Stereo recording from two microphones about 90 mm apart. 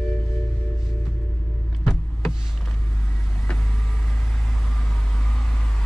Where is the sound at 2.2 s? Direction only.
Centre (ahead or behind).